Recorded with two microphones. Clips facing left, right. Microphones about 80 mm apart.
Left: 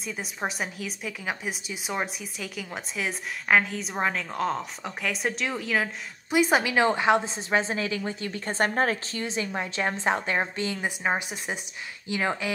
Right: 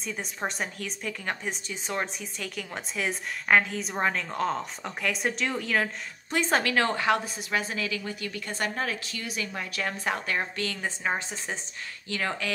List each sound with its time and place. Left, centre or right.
0.0 s a woman's voice: centre